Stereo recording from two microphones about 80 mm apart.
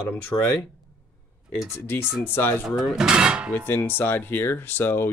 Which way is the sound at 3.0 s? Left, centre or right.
Centre.